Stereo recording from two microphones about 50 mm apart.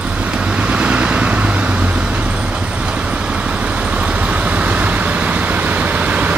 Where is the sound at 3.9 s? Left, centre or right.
Right.